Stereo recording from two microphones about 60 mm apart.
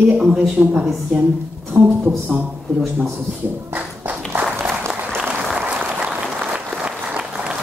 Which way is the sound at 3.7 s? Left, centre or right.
Right.